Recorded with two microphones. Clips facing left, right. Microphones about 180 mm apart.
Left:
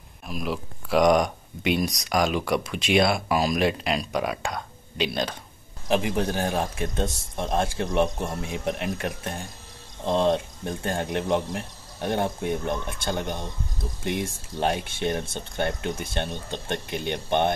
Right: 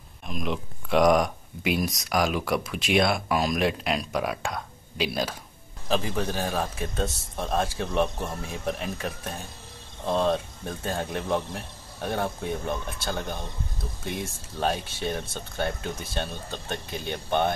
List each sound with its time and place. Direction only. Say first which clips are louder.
0.3 s speech: even; 5° left (ahead or behind)
5.9 s speech: left 3 dB; 15° left (ahead or behind)
16.7 s speech: left 5 dB; 65° left (ahead or behind)
17.1 s speech: left 1 dB; 20° left (ahead or behind)